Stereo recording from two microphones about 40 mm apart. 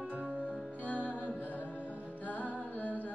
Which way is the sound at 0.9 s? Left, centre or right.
Left.